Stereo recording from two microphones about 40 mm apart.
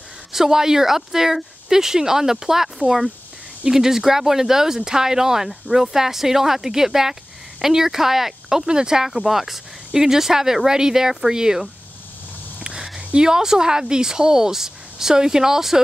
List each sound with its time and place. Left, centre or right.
0.3 s speech: centre